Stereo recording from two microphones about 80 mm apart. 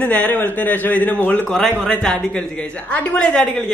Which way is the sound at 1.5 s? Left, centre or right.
Centre.